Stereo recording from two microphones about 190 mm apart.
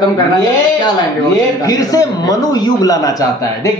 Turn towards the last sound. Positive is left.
turn(degrees=20)  # may be behind; listen again after turning